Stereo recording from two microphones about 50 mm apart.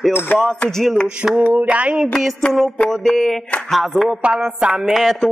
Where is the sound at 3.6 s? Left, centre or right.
Centre.